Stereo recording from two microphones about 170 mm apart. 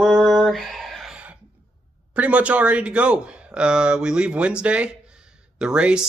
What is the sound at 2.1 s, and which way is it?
Speech, 10° right (ahead or behind).